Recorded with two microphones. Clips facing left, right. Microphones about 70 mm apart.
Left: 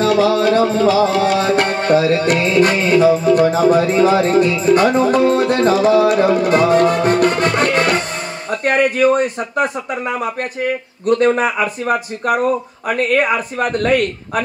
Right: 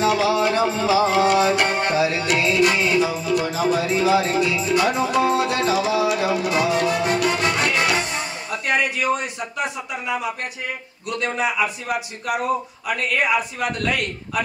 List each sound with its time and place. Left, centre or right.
0.0 s music: right
1.7 s music: left
11.1 s a man's voice: left
12.8 s music: left